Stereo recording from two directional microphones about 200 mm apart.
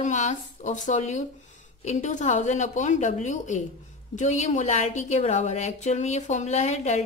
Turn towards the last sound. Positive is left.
turn(degrees=35)  # may be behind; listen again after turning